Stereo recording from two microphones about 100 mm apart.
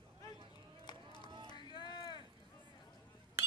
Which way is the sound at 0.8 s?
50° left (ahead or behind).